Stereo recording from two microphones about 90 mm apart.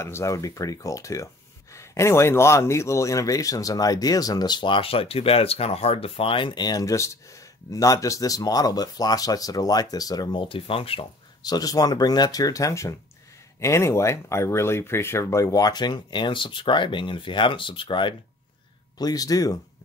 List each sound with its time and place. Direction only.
0.0 s speech: 30° left (ahead or behind)
10.4 s speech: 85° left
11.4 s speech: 45° left (ahead or behind); by 18.1 s 65° left (ahead or behind)
18.9 s speech: 45° left (ahead or behind)